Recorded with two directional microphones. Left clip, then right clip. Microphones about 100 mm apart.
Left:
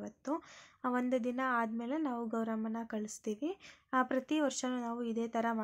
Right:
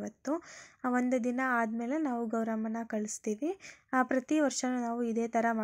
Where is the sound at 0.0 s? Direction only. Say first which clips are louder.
Right 4 dB; 40° right (ahead or behind).